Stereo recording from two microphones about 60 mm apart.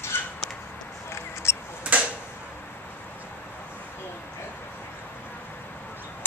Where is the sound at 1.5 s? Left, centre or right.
Left.